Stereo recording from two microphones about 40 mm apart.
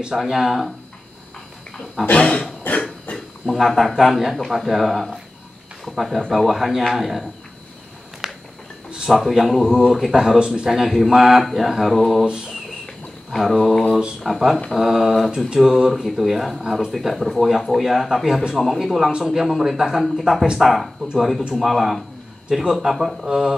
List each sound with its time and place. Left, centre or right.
0.1 s speech: centre
2.1 s cough: left
3.1 s a sound: left
3.4 s speech: centre
8.2 s a sound: centre
9.1 s speech: centre
10.4 s speech: right
10.7 s speech: centre
13.4 s speech: centre
19.4 s speech: centre
22.5 s speech: centre